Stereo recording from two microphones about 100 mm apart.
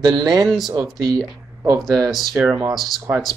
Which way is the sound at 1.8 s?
Centre (ahead or behind).